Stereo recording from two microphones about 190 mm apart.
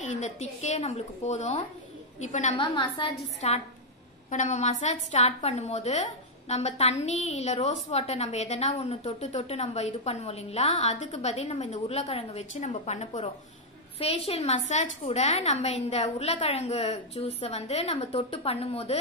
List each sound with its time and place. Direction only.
0.0 s a woman's voice: 40° left (ahead or behind)
2.5 s a woman's voice: 25° left (ahead or behind)